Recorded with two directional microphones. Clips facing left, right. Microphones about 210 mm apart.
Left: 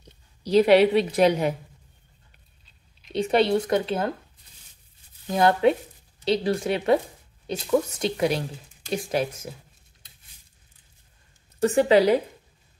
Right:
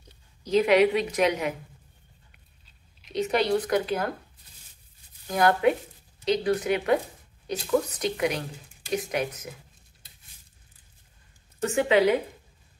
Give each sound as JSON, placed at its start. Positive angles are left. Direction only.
{"t": 0.4, "sound": "a woman's voice", "side_deg": 35}
{"t": 3.1, "sound": "speech", "side_deg": 30}
{"t": 5.2, "sound": "speech", "side_deg": 25}
{"t": 11.6, "sound": "a woman's voice", "side_deg": 35}